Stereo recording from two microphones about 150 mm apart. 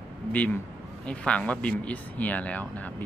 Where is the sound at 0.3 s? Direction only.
10° left (ahead or behind).